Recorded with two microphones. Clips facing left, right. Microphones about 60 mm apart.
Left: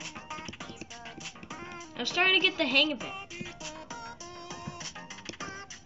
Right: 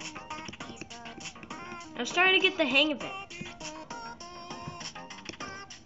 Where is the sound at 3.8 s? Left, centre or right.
Right.